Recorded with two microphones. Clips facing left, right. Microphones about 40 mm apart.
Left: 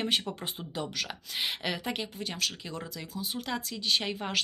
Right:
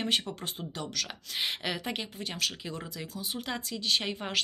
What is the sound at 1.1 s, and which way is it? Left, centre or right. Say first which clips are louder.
Speech: even; centre.